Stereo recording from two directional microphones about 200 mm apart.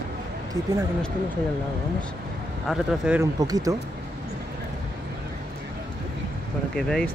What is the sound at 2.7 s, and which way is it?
Speech, 5° right (ahead or behind).